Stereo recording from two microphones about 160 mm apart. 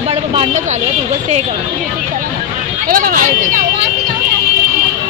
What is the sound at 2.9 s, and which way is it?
Speech, 60° right (ahead or behind).